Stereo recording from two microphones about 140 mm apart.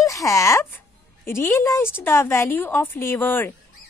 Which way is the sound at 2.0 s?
15° left (ahead or behind).